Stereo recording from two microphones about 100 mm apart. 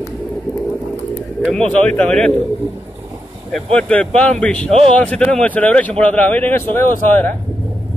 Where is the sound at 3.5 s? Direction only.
10° left (ahead or behind).